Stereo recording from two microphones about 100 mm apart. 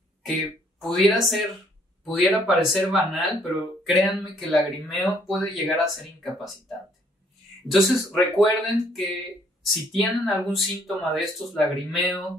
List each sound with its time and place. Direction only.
0.2 s speech: centre (ahead or behind)
7.6 s speech: centre (ahead or behind)